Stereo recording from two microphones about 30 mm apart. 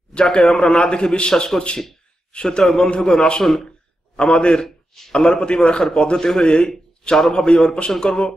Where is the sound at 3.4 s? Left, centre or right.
Centre.